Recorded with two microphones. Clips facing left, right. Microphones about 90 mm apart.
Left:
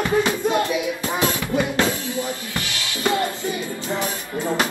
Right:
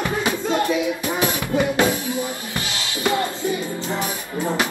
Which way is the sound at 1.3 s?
20° right (ahead or behind).